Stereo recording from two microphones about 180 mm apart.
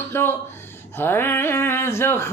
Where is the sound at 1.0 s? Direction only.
10° left (ahead or behind).